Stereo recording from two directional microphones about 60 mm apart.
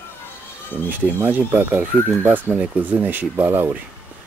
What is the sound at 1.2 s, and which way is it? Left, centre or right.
Speech, right.